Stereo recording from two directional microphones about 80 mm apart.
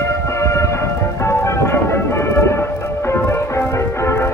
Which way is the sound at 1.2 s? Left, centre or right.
Left.